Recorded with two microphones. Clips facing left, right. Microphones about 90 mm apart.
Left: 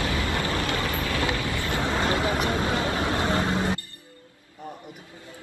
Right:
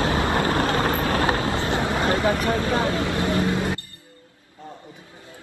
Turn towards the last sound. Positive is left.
turn(degrees=15)  # may be behind; listen again after turning